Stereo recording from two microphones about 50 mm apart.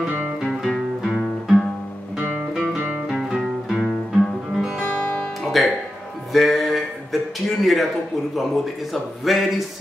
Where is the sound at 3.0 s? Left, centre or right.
Centre.